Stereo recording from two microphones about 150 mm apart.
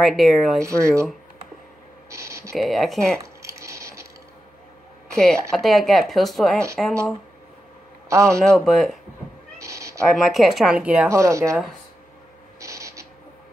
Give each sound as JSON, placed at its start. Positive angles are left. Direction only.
{"t": 0.0, "sound": "speech", "side_deg": 0}
{"t": 0.6, "sound": "speech", "side_deg": -20}
{"t": 2.0, "sound": "a sound", "side_deg": -20}
{"t": 2.5, "sound": "speech", "side_deg": 0}
{"t": 3.4, "sound": "squish", "side_deg": -20}
{"t": 5.1, "sound": "speech", "side_deg": 0}
{"t": 8.1, "sound": "a man's voice", "side_deg": -20}
{"t": 8.4, "sound": "speech", "side_deg": 0}
{"t": 9.6, "sound": "cat", "side_deg": -20}
{"t": 10.1, "sound": "speech", "side_deg": 0}
{"t": 11.1, "sound": "speech", "side_deg": -20}
{"t": 12.5, "sound": "owl", "side_deg": -20}